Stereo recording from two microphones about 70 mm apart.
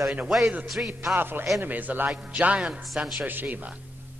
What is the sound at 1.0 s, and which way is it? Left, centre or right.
A man's voice, right.